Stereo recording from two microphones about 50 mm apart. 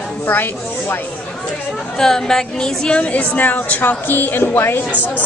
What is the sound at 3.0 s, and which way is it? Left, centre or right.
A woman's voice, left.